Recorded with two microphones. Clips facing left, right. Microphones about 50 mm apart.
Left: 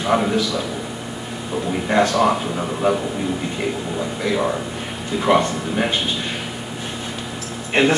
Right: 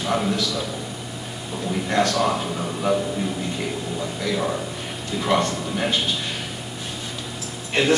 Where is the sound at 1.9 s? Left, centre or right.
Centre.